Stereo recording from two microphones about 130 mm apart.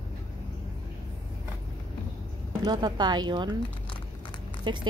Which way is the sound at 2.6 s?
35° right (ahead or behind).